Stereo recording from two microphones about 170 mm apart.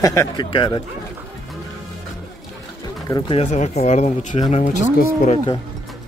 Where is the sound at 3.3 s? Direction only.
45° left (ahead or behind).